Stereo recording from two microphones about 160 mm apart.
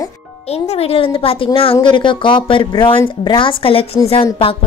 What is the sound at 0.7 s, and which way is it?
A woman's voice, 40° left (ahead or behind).